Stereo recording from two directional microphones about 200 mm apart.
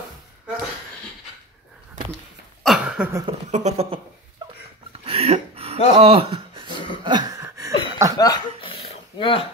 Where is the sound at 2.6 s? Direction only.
5° right (ahead or behind).